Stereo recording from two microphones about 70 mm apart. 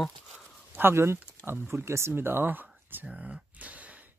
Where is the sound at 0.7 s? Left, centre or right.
Right.